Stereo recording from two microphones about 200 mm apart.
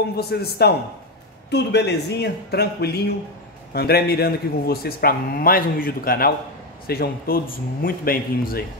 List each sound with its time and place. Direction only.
0.1 s a man's voice: 50° left (ahead or behind)